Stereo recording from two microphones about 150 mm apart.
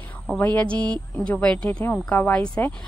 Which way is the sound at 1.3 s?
5° left (ahead or behind).